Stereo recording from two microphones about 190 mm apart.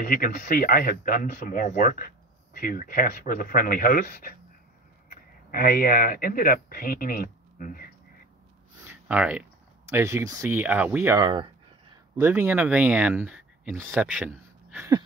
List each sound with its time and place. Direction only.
0.0 s speech: 50° left (ahead or behind)
8.8 s a sound: 5° right (ahead or behind)
9.8 s speech: 15° right (ahead or behind)
11.1 s speech: 25° right (ahead or behind)
12.2 s speech: 10° right (ahead or behind)